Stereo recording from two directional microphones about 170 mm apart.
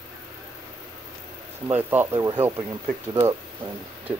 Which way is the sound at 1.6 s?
10° right (ahead or behind).